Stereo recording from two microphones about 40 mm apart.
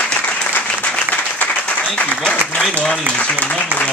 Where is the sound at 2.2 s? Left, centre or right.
Left.